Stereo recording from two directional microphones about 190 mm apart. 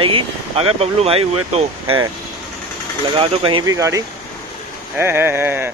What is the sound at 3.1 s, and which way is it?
Speech, 30° right (ahead or behind).